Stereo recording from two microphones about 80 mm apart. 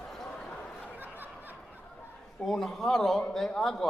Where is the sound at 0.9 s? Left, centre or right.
Right.